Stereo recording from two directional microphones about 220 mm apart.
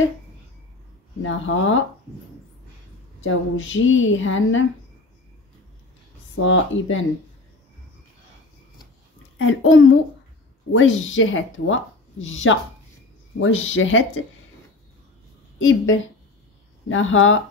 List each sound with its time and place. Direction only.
1.2 s speech: 60° left (ahead or behind)
3.2 s speech: 60° left (ahead or behind)
6.3 s speech: 60° left (ahead or behind)
9.4 s speech: 60° left (ahead or behind)
15.6 s speech: 60° left (ahead or behind)